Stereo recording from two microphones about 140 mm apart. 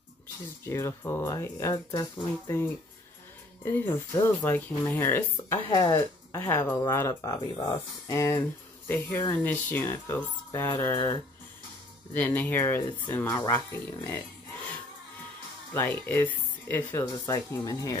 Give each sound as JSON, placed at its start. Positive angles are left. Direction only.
{"t": 0.7, "sound": "speech", "side_deg": 20}
{"t": 12.4, "sound": "speech", "side_deg": 15}
{"t": 15.7, "sound": "speech", "side_deg": 15}
{"t": 17.0, "sound": "speech", "side_deg": 25}